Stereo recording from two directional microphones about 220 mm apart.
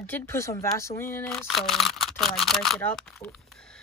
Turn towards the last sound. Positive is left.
turn(degrees=0)  # may be behind; listen again after turning